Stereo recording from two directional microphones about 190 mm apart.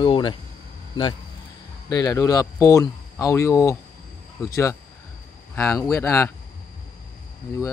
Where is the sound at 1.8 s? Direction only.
20° left (ahead or behind).